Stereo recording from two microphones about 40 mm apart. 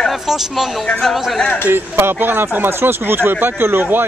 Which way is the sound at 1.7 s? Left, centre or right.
Right.